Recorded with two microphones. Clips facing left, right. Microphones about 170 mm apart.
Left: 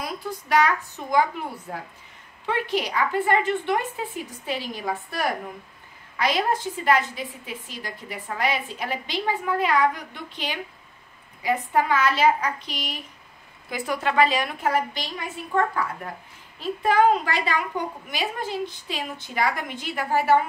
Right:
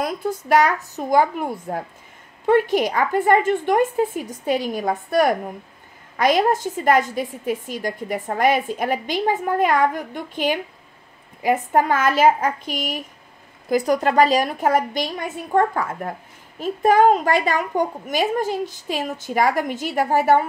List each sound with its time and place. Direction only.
0.0 s a woman's voice: 45° right (ahead or behind)